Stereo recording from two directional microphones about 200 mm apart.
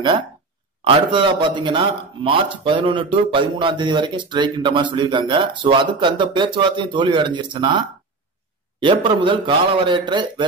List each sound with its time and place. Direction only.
0.8 s a man's voice: 25° right (ahead or behind)